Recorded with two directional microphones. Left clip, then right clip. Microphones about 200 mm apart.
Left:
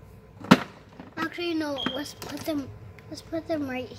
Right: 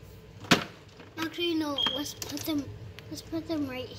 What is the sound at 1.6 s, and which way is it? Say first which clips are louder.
Smoke detector: even; 20° left (ahead or behind).